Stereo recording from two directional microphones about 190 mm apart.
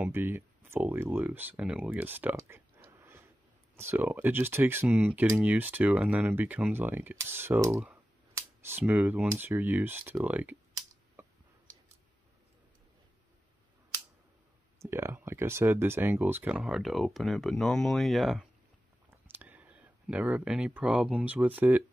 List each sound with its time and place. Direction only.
0.0 s speech: 10° right (ahead or behind)
11.2 s a sound: 10° right (ahead or behind)
14.8 s speech: 15° right (ahead or behind)